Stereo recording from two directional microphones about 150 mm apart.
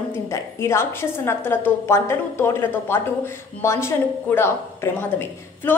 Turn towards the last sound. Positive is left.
turn(degrees=15)  # may be behind; listen again after turning